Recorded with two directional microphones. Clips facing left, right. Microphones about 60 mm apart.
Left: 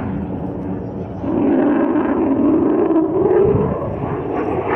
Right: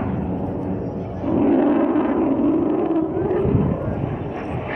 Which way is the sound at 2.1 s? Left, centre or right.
Left.